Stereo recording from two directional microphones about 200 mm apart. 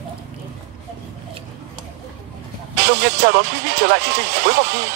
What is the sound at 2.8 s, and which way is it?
Music, 60° right (ahead or behind).